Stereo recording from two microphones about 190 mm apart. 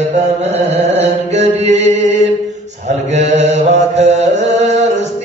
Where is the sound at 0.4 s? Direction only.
35° right (ahead or behind).